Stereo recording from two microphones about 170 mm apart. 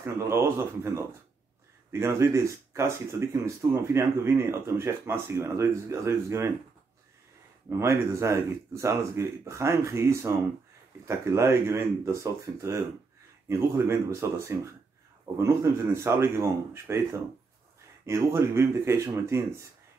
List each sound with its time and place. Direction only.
0.0 s speech: 15° right (ahead or behind)
7.8 s speech: 15° right (ahead or behind)